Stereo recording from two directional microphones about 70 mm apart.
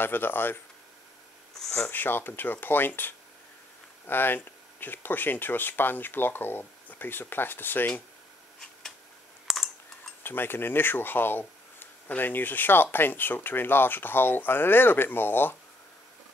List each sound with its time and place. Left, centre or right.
0.0 s speech: left
1.8 s speech: left
9.5 s typing: centre
10.2 s speech: left